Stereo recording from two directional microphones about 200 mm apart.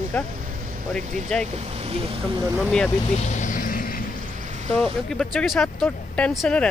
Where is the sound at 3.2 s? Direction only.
35° left (ahead or behind).